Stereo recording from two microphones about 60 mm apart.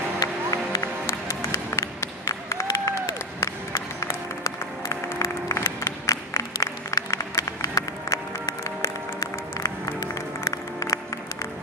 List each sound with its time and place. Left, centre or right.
0.2 s music: left
1.0 s music: left
6.0 s applause: left
10.4 s music: left